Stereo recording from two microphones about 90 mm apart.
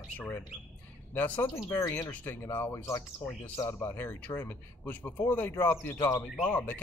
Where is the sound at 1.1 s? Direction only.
20° left (ahead or behind).